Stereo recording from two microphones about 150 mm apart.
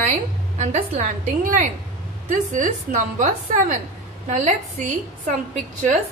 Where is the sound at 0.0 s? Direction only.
50° right (ahead or behind).